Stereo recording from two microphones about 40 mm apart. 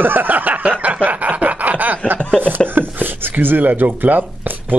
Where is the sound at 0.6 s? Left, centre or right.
Right.